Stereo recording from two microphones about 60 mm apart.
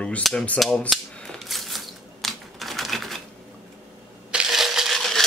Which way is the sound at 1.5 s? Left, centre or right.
Centre.